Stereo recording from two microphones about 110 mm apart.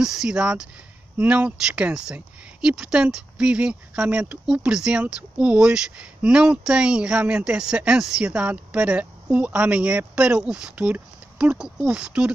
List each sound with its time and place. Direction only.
0.0 s speech: 5° right (ahead or behind)